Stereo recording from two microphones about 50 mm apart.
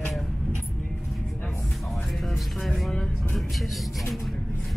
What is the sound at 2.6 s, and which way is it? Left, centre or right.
Speech, centre.